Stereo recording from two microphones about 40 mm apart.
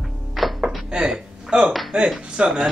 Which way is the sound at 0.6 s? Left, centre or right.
Right.